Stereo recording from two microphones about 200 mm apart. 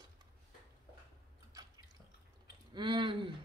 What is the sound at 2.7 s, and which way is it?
Speech, 25° right (ahead or behind).